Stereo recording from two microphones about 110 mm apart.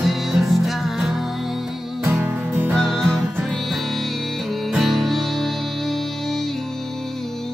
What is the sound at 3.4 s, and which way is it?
Music, centre (ahead or behind).